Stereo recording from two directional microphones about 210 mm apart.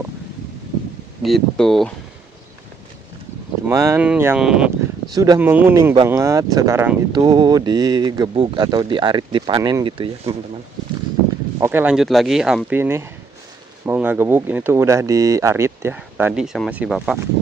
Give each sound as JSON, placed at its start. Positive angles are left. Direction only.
{"t": 1.2, "sound": "speech", "side_deg": 0}
{"t": 3.6, "sound": "speech", "side_deg": -15}
{"t": 5.1, "sound": "speech", "side_deg": -15}
{"t": 11.6, "sound": "speech", "side_deg": -10}